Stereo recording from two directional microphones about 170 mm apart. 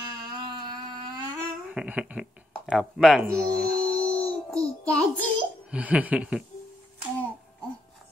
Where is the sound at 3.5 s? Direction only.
65° right (ahead or behind).